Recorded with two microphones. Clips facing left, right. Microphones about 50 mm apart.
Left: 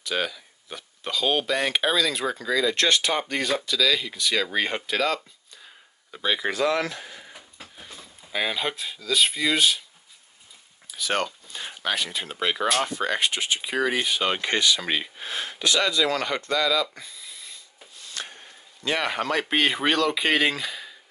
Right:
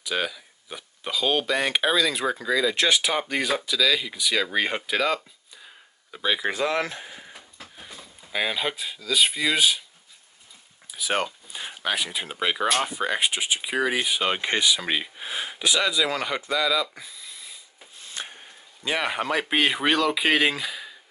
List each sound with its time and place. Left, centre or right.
0.0 s speech: centre
6.5 s speech: right
7.1 s a sound: centre
7.7 s speech: centre
10.9 s speech: centre
17.9 s speech: right; by 20.9 s centre